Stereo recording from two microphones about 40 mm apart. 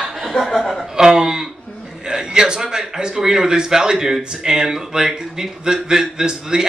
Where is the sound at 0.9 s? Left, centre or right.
Centre.